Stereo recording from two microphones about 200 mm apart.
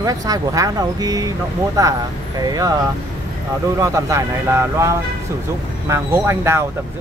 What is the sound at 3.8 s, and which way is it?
Speech, 15° right (ahead or behind).